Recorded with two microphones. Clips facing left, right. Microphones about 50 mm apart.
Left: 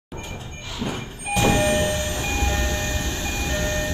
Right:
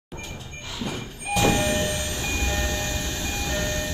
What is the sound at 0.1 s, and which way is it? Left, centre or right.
Vehicle, left.